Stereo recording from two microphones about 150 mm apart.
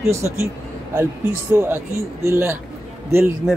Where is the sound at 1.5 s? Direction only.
15° right (ahead or behind).